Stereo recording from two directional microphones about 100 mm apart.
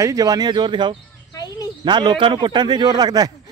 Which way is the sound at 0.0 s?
35° right (ahead or behind).